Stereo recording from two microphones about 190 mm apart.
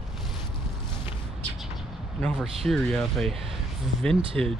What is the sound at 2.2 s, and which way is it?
Speech, centre (ahead or behind).